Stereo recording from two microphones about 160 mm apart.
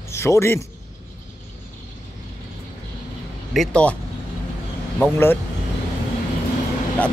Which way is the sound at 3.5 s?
5° left (ahead or behind).